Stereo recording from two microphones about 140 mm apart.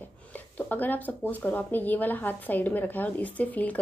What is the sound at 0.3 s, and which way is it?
Speech, 10° left (ahead or behind).